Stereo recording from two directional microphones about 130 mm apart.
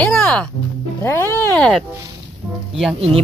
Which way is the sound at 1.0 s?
20° left (ahead or behind).